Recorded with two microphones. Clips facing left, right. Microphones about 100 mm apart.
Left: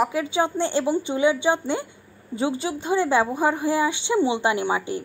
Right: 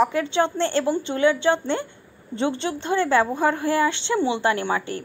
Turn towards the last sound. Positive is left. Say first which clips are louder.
# even
turn(degrees=15)  # may be behind; listen again after turning